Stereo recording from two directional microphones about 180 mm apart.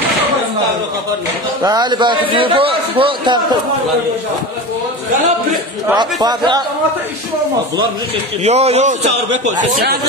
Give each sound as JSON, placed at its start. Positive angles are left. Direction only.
{"t": 1.6, "sound": "a man's voice", "side_deg": -20}
{"t": 5.9, "sound": "a man's voice", "side_deg": -25}
{"t": 8.5, "sound": "speech", "side_deg": -35}